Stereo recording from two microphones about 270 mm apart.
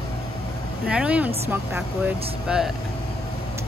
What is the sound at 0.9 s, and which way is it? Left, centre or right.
Speech, centre.